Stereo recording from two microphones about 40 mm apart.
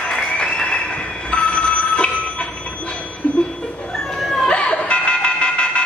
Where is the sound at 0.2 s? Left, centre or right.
Left.